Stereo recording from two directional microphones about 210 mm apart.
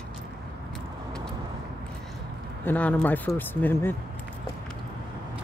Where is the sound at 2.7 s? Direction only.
5° left (ahead or behind).